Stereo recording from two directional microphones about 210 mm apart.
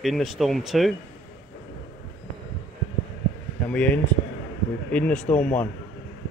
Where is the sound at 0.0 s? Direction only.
Centre (ahead or behind).